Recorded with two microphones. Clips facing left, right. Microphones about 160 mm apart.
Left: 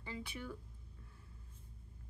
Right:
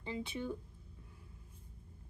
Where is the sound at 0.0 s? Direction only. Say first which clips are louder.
Right 6 dB; 25° right (ahead or behind).